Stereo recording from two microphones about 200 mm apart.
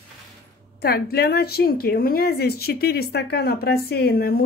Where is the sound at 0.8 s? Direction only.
50° left (ahead or behind).